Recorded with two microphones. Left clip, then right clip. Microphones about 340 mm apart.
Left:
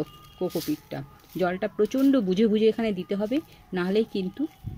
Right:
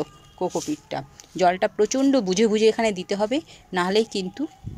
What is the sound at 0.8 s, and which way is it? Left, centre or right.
A woman's voice, right.